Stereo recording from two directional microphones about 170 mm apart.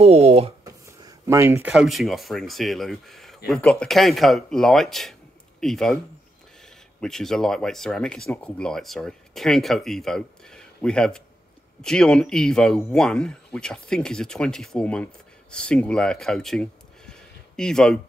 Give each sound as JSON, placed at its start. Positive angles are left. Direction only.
{"t": 0.0, "sound": "speech", "side_deg": -35}
{"t": 0.7, "sound": "speech", "side_deg": -20}
{"t": 7.0, "sound": "speech", "side_deg": 5}